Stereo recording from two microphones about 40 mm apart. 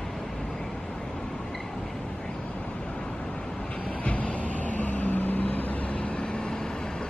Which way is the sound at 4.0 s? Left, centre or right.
Left.